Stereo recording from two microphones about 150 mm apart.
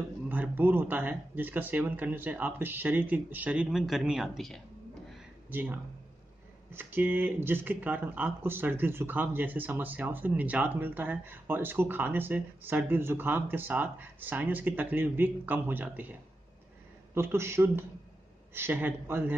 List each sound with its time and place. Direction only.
0.3 s speech: 10° right (ahead or behind)
5.5 s speech: 10° right (ahead or behind)